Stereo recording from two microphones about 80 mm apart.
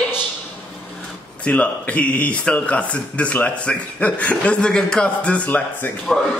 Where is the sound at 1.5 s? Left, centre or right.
Centre.